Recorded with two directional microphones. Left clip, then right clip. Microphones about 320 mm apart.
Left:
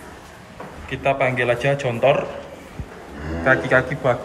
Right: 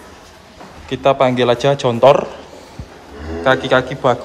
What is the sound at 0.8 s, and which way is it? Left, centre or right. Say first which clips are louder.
A man's voice: right 6 dB; centre.